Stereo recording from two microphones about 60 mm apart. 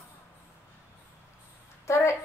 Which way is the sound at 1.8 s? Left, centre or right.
Left.